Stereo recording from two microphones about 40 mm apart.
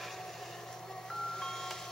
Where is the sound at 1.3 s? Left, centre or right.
Centre.